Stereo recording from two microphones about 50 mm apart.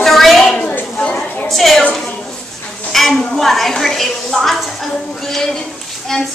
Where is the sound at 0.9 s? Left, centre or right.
Left.